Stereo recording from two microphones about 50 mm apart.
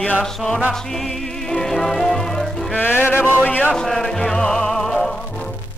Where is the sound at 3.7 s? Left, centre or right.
Centre.